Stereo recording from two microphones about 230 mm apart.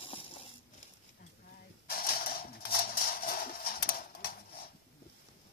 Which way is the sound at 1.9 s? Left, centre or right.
Left.